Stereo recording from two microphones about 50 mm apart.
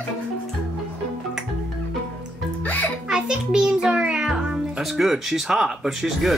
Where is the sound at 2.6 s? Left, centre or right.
Left.